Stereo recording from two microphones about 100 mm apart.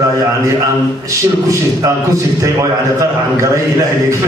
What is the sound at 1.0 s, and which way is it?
A man's voice, 35° right (ahead or behind).